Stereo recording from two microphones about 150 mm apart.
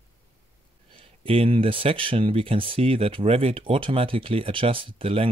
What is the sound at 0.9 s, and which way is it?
Speech, 35° right (ahead or behind).